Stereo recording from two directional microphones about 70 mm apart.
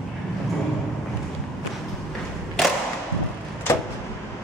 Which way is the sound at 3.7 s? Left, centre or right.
Left.